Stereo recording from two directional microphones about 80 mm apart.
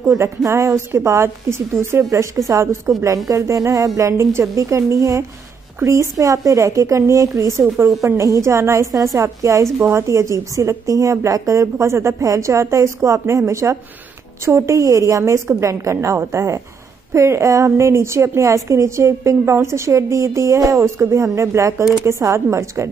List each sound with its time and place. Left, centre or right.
0.1 s a woman's voice: right